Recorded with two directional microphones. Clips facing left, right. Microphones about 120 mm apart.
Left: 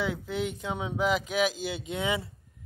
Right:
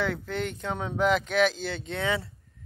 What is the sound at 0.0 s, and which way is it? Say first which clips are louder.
Speech: right 1 dB; 5° left (ahead or behind).